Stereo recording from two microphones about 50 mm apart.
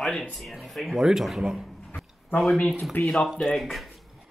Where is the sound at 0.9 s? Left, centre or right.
Centre.